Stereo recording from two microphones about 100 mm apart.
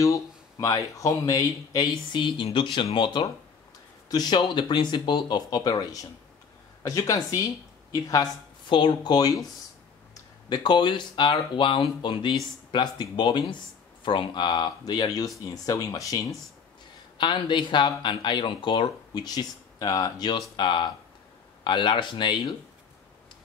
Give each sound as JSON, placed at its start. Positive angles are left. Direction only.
{"t": 0.0, "sound": "speech", "side_deg": 30}
{"t": 2.2, "sound": "speech", "side_deg": 55}
{"t": 8.6, "sound": "speech", "side_deg": 50}
{"t": 17.2, "sound": "speech", "side_deg": 50}